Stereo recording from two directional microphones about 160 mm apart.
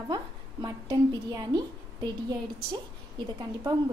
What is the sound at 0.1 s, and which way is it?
A woman's voice, 25° right (ahead or behind).